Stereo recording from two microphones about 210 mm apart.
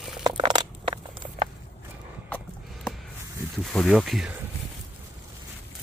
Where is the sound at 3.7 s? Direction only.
Centre (ahead or behind).